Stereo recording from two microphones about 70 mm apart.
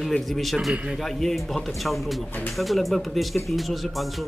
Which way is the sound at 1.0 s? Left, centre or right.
Centre.